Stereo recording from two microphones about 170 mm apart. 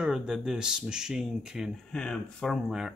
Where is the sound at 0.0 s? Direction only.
5° right (ahead or behind).